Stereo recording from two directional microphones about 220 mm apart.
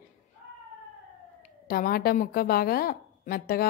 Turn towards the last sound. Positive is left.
turn(degrees=40)  # may be behind; listen again after turning